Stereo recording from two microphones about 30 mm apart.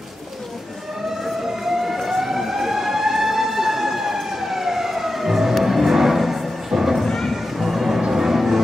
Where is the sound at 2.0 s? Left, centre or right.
Centre.